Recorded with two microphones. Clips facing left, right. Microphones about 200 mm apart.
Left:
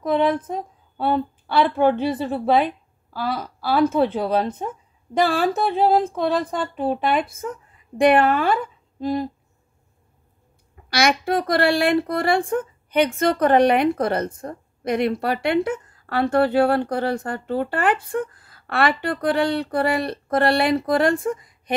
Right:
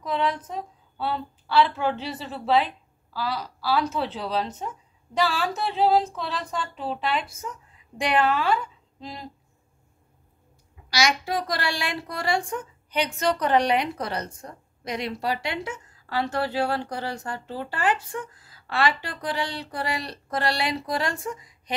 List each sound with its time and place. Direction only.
0.0 s a woman's voice: 55° left (ahead or behind)
10.9 s speech: 55° left (ahead or behind)